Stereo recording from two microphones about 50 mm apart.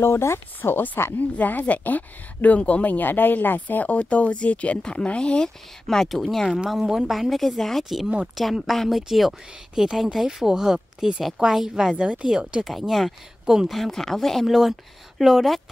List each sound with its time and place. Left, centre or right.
0.0 s speech: left
1.2 s speech: left
5.9 s speech: centre
6.7 s speech: centre
12.0 s speech: right
12.6 s speech: centre
14.4 s speech: centre